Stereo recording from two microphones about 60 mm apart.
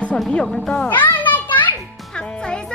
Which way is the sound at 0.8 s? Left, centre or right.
Left.